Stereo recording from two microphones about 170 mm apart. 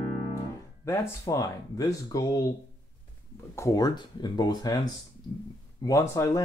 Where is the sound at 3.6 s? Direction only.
20° left (ahead or behind).